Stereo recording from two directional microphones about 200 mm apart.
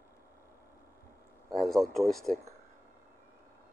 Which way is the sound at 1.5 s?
Centre (ahead or behind).